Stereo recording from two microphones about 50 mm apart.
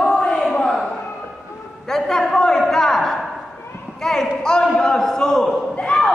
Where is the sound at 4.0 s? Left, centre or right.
Centre.